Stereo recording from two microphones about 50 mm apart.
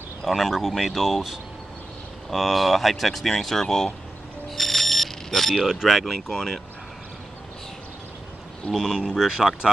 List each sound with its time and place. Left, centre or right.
0.2 s speech: centre
4.5 s alarm: centre
5.7 s speech: centre
8.7 s speech: centre